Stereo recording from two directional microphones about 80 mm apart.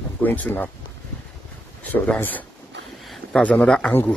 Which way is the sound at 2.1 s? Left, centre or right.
Left.